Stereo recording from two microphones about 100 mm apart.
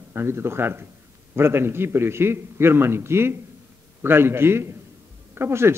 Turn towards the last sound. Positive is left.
turn(degrees=-25)  # may be behind; listen again after turning